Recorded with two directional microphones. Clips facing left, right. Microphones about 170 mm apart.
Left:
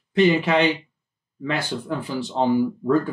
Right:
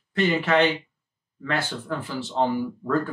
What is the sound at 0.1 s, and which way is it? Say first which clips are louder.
Speech: left 4 dB; 15° left (ahead or behind).